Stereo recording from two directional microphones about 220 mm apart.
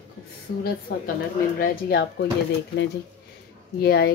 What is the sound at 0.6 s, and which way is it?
Speech, 40° left (ahead or behind).